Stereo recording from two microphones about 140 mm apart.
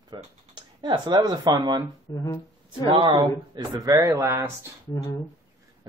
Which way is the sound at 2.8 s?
40° right (ahead or behind).